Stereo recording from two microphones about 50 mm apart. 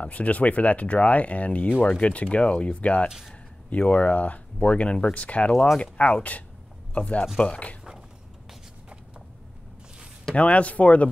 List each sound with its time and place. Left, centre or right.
0.0 s speech: left
3.1 s speech: centre
3.7 s speech: left
10.3 s speech: left